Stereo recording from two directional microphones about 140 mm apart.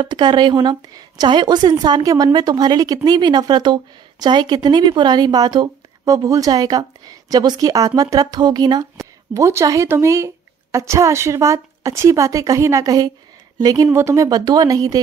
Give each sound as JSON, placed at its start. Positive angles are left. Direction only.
{"t": 0.0, "sound": "a woman's voice", "side_deg": -30}